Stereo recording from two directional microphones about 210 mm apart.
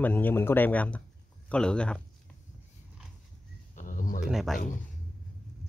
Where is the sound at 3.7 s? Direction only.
40° left (ahead or behind).